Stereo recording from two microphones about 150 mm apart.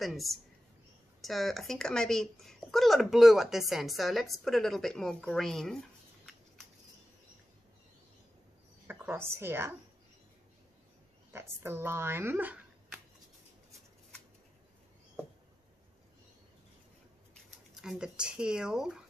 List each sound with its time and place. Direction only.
0.0 s speech: centre (ahead or behind)
8.8 s a woman's voice: 10° right (ahead or behind)
11.3 s speech: 15° right (ahead or behind)
17.7 s speech: 5° right (ahead or behind)